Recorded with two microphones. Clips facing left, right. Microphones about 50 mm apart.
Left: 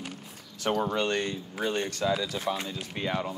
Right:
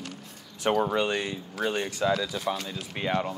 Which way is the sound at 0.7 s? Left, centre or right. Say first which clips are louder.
Right 1 dB; centre.